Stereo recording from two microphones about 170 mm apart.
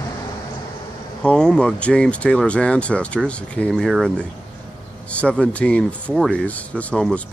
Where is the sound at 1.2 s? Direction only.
5° left (ahead or behind).